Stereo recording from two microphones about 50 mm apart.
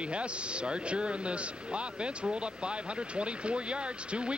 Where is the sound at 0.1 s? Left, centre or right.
Right.